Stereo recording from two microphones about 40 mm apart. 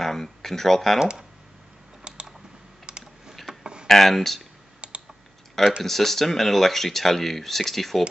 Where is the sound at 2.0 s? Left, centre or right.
Right.